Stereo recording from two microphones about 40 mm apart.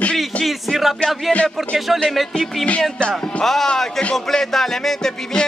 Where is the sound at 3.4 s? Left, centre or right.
Centre.